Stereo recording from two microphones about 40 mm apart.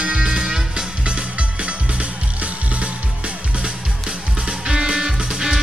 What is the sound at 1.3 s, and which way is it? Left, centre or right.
Music, right.